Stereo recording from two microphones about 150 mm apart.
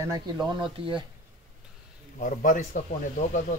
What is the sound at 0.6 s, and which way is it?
Speech, 35° right (ahead or behind).